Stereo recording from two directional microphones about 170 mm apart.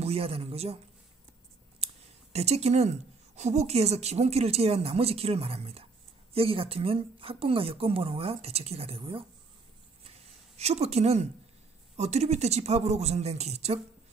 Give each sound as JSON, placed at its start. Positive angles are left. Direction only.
{"t": 0.0, "sound": "a woman's voice", "side_deg": -35}
{"t": 1.8, "sound": "a sound", "side_deg": -35}
{"t": 2.3, "sound": "a woman's voice", "side_deg": -40}
{"t": 10.6, "sound": "a woman's voice", "side_deg": -40}